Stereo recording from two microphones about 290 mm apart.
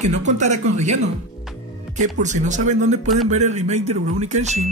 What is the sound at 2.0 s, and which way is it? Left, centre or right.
Speech, right.